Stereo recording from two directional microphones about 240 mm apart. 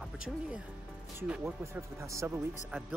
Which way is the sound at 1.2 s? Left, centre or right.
Centre.